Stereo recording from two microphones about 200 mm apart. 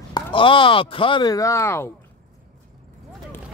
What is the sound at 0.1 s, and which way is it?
Speech, 25° left (ahead or behind).